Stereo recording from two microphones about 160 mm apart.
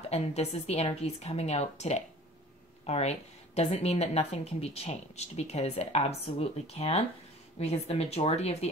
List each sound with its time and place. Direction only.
0.1 s a woman's voice: 40° left (ahead or behind)